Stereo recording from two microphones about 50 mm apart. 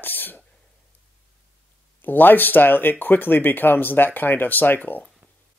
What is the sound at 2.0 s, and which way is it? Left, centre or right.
Speech, left.